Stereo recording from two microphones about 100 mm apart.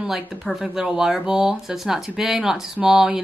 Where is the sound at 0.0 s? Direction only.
Centre (ahead or behind).